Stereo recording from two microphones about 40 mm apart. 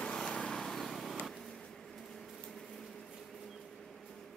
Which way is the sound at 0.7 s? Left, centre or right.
Centre.